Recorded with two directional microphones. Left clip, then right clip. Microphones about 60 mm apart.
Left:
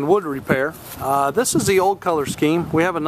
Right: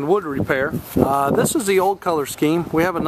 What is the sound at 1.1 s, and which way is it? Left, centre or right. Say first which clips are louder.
Speech: left 3 dB; centre.